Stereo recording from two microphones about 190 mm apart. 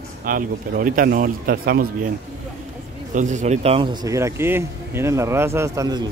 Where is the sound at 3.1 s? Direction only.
40° right (ahead or behind); by 6.0 s 20° right (ahead or behind).